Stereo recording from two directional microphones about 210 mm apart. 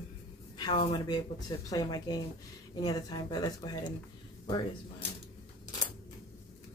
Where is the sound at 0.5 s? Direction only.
20° left (ahead or behind).